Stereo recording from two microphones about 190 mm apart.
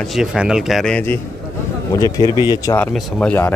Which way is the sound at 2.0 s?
15° left (ahead or behind).